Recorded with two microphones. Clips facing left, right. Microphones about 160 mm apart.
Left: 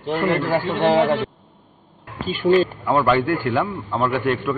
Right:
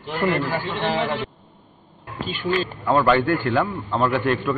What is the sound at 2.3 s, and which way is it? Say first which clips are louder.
Speech: left 8 dB; 45° left (ahead or behind).